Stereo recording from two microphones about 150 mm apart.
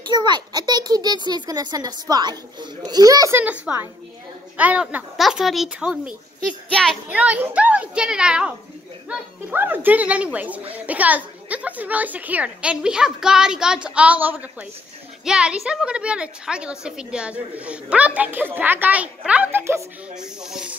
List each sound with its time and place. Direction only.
0.0 s a child's voice: 30° right (ahead or behind)
3.3 s a woman's voice: 10° right (ahead or behind)
20.2 s speech: 5° right (ahead or behind)